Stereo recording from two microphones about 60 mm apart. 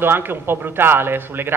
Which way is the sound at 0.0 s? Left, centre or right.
Right.